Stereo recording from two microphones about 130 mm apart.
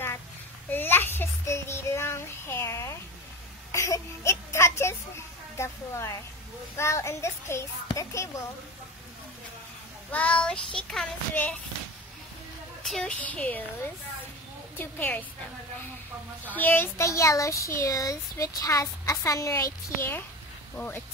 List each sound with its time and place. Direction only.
0.7 s child singing: 15° left (ahead or behind)
3.7 s a sound: 25° left (ahead or behind)
5.6 s speech: 20° left (ahead or behind)
10.1 s a woman's voice: 10° left (ahead or behind)
12.8 s a woman's voice: 5° left (ahead or behind)
16.4 s a woman's voice: 15° left (ahead or behind)